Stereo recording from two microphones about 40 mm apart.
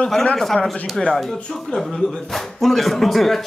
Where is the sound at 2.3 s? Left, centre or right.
Centre.